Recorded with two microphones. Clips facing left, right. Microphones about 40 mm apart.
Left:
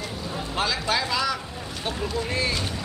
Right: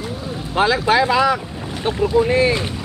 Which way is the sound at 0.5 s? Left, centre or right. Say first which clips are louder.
Right 10 dB; right.